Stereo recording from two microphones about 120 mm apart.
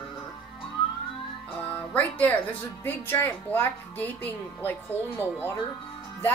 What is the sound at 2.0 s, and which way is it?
Speech, 10° left (ahead or behind).